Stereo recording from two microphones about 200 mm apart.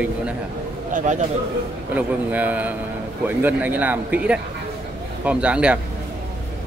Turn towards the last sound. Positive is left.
turn(degrees=-5)  # may be behind; listen again after turning